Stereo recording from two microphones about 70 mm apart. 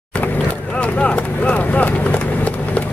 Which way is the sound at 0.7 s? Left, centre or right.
Centre.